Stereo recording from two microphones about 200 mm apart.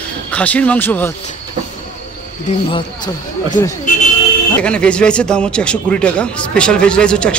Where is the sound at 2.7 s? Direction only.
25° left (ahead or behind).